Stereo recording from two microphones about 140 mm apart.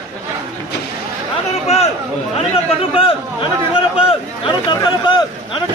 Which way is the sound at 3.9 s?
35° left (ahead or behind).